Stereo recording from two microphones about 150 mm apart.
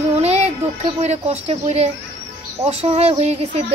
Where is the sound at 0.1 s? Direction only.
45° right (ahead or behind).